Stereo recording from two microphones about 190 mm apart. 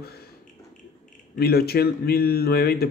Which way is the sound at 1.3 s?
55° left (ahead or behind).